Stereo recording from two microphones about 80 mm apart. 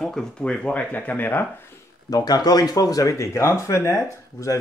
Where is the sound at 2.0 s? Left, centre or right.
Left.